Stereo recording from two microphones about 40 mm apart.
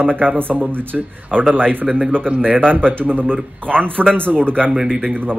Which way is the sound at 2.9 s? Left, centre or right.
Right.